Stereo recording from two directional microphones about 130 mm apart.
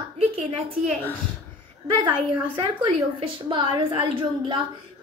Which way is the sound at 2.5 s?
40° right (ahead or behind).